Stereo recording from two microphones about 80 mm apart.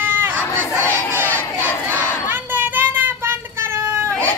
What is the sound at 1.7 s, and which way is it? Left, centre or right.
Crowd, left.